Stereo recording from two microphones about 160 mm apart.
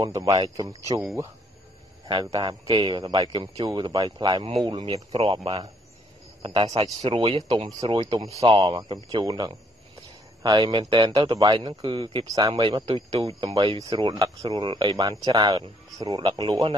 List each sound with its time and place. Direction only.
0.0 s speech: 20° right (ahead or behind)
2.0 s speech: 30° right (ahead or behind)
7.8 s speech: 30° right (ahead or behind)